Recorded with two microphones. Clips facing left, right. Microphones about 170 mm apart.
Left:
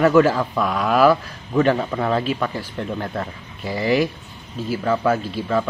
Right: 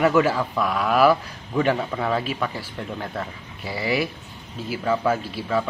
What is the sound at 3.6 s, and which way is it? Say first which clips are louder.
Speech: left 5 dB; 45° left (ahead or behind).